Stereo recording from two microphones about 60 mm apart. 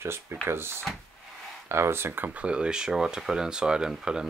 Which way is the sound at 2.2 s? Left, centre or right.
Centre.